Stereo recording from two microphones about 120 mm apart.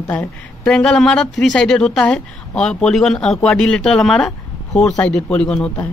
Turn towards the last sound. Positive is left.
turn(degrees=10)  # may be behind; listen again after turning